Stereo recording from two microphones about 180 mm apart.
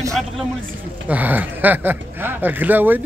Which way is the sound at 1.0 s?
10° right (ahead or behind).